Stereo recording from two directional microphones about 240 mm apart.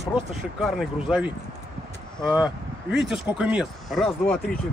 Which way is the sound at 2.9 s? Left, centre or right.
Centre.